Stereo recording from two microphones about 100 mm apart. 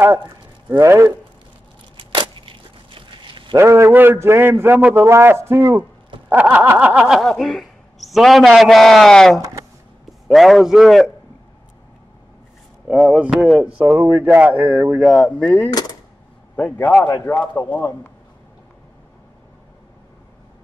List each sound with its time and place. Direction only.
0.0 s a man's voice: 20° right (ahead or behind)
2.0 s a sound: 60° right (ahead or behind)
3.5 s a man's voice: 30° right (ahead or behind)
6.2 s snicker: 15° right (ahead or behind)
12.8 s speech: 5° right (ahead or behind)
13.8 s speech: 30° right (ahead or behind)
14.2 s speech: 15° right (ahead or behind)
15.0 s speech: 5° left (ahead or behind)